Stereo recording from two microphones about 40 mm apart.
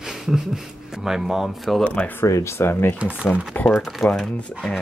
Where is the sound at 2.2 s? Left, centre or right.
Left.